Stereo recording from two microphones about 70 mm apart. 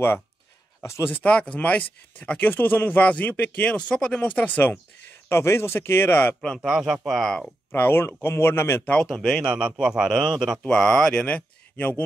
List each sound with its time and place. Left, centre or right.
0.8 s speech: left
1.1 s speech: centre
5.3 s speech: left
6.6 s speech: centre
7.7 s speech: left
9.2 s a man's voice: centre
10.6 s speech: centre
11.2 s speech: left